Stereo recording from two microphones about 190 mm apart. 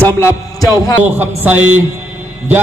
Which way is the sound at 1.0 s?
10° right (ahead or behind).